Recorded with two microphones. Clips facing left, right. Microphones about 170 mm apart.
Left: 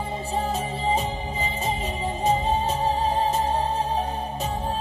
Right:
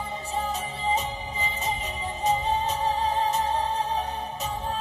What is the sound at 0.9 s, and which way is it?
Music, 30° left (ahead or behind).